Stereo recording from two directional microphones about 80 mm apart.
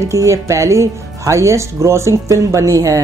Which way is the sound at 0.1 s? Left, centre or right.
Right.